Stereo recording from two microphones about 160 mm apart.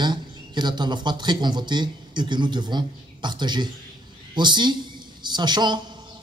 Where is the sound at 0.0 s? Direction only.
25° right (ahead or behind).